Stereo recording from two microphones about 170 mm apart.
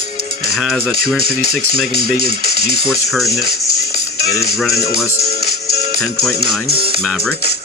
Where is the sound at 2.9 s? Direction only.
Centre (ahead or behind).